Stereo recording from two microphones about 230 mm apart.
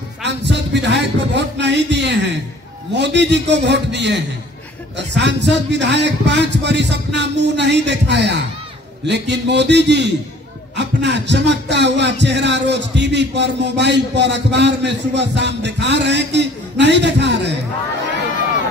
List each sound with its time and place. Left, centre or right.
0.2 s speech: right